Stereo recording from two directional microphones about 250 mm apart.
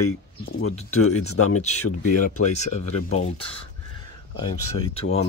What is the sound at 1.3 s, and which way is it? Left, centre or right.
Speech, left.